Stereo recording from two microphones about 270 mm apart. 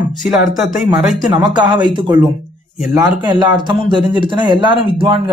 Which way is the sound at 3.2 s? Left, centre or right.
Centre.